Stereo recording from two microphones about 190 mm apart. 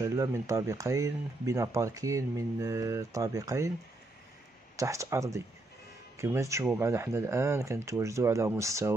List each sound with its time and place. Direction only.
0.0 s speech: 15° right (ahead or behind)
4.7 s speech: 15° right (ahead or behind)